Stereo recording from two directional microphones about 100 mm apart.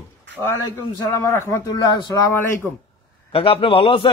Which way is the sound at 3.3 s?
70° left (ahead or behind).